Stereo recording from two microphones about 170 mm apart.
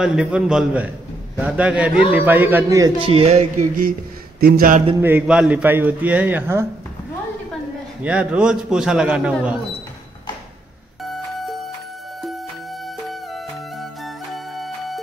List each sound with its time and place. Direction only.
0.0 s a man's voice: 5° right (ahead or behind)
2.8 s speech: 30° right (ahead or behind); by 3.9 s 50° right (ahead or behind)
4.4 s speech: 60° right (ahead or behind)
5.0 s a man's voice: 10° right (ahead or behind)
8.0 s a man's voice: 5° right (ahead or behind)
11.1 s music: centre (ahead or behind)
13.1 s music: centre (ahead or behind)